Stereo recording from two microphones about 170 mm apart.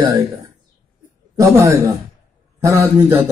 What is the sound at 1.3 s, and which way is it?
Speech, 20° right (ahead or behind).